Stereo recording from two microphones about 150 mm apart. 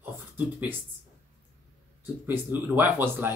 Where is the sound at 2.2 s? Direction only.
15° right (ahead or behind).